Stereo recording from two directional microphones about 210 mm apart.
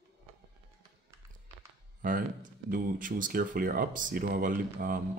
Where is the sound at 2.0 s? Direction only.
40° right (ahead or behind).